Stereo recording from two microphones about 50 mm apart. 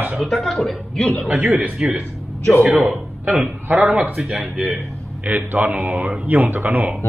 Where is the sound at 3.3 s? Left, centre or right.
Right.